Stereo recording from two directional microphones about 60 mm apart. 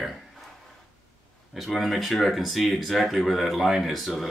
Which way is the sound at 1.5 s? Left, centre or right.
Centre.